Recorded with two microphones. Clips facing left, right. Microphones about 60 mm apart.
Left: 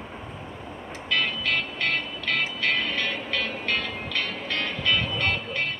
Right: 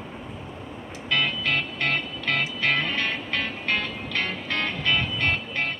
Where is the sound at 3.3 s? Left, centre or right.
Right.